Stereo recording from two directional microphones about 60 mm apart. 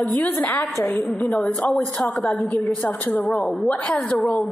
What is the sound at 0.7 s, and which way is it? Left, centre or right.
A woman's voice, left.